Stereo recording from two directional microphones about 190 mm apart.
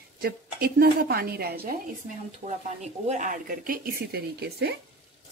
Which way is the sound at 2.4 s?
40° right (ahead or behind).